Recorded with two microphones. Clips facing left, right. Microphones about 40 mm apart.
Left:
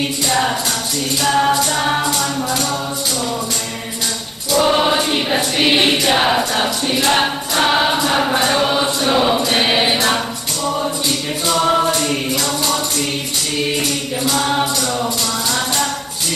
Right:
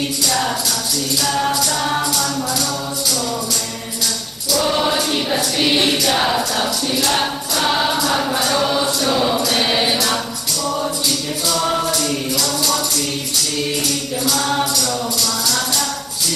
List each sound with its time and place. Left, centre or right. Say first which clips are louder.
0.2 s music: left 3 dB; left
4.5 s choir: left 3 dB; left
11.1 s music: left 2 dB; left